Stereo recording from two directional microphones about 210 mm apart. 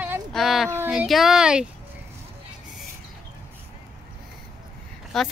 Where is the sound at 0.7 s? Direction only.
5° right (ahead or behind).